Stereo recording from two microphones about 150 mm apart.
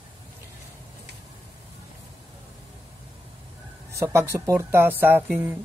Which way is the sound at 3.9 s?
15° right (ahead or behind).